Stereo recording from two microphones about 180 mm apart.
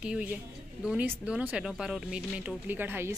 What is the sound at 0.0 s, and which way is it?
Speech, 5° right (ahead or behind).